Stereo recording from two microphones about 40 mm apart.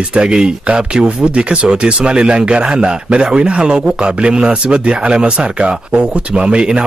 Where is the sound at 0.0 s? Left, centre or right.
Right.